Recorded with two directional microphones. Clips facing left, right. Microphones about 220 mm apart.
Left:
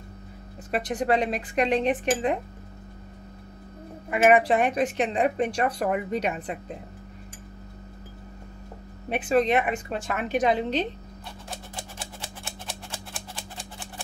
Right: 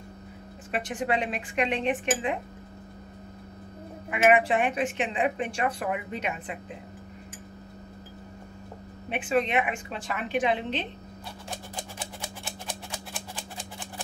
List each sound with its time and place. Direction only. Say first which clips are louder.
0.7 s a woman's voice: left 4 dB; 40° left (ahead or behind)
4.1 s a woman's voice: left 3 dB; 40° left (ahead or behind)
9.1 s a woman's voice: left 4 dB; 40° left (ahead or behind)
12.6 s a sound: right 1 dB; 10° left (ahead or behind)